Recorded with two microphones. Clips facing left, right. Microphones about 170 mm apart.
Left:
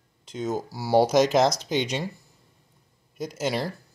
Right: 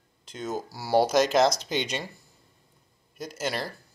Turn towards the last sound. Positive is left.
turn(degrees=20)  # may be behind; listen again after turning